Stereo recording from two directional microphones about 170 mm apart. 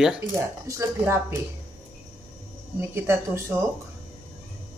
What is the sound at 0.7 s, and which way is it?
Speech, 20° right (ahead or behind).